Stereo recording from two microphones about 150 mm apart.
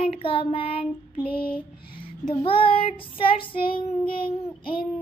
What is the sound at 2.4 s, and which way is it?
Child singing, 35° left (ahead or behind).